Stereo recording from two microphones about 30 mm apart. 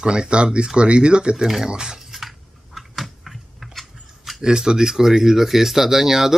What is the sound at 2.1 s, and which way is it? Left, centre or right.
Typing, centre.